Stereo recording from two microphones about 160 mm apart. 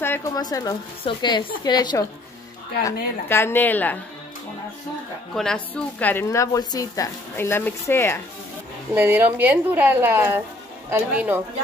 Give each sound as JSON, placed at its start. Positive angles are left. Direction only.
{"t": 0.0, "sound": "a woman's voice", "side_deg": 15}
{"t": 2.8, "sound": "a woman's voice", "side_deg": 15}
{"t": 5.3, "sound": "a woman's voice", "side_deg": 5}
{"t": 8.9, "sound": "a woman's voice", "side_deg": -10}